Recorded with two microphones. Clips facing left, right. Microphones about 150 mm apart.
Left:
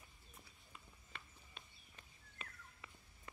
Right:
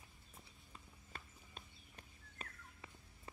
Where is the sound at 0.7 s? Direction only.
40° right (ahead or behind).